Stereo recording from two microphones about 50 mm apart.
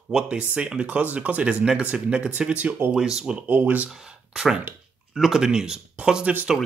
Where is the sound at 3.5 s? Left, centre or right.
Right.